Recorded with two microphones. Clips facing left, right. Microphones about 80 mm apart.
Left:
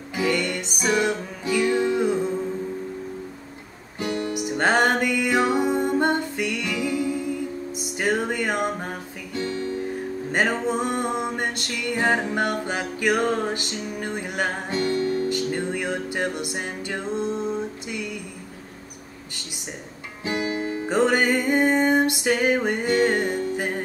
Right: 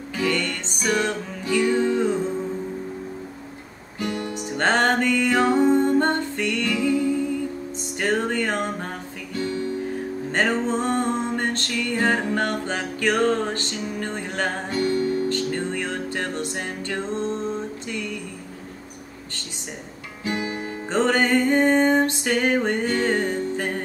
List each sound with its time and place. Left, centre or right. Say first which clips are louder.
0.1 s music: left 1 dB; centre
4.4 s music: even; centre
10.3 s music: right 1 dB; centre
14.9 s music: right 1 dB; right
15.2 s music: even; centre
17.8 s a sound: right 1 dB; centre
20.2 s music: left 2 dB; left